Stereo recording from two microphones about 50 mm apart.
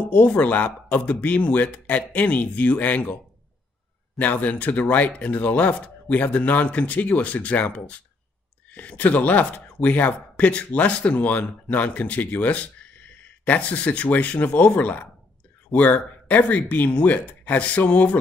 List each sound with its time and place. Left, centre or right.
0.0 s speech: left
4.2 s speech: left